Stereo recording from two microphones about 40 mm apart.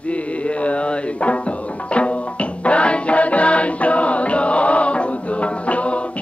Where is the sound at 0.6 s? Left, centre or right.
Left.